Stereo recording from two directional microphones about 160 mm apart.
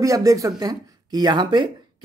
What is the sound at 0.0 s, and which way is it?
Speech, 20° right (ahead or behind).